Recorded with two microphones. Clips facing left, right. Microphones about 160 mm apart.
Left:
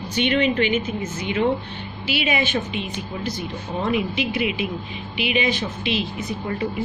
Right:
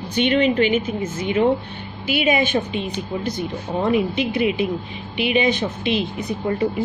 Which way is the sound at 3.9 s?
35° right (ahead or behind).